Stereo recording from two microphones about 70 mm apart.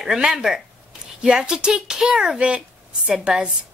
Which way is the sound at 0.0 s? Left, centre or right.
Centre.